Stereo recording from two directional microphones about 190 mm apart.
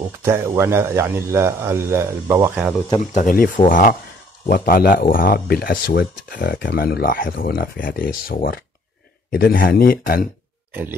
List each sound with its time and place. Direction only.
0.2 s a man's voice: 15° right (ahead or behind)
3.0 s speech: 40° left (ahead or behind)
10.7 s burping: 10° right (ahead or behind)